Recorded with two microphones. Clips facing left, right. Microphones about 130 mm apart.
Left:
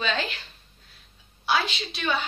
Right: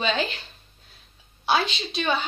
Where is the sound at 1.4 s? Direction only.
25° right (ahead or behind).